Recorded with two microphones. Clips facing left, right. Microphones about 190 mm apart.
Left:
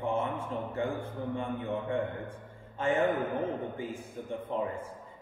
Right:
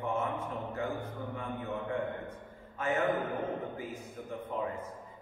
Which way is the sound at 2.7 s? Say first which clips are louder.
Left 3 dB; 30° left (ahead or behind).